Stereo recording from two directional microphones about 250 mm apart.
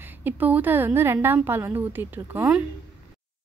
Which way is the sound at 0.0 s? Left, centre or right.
Centre.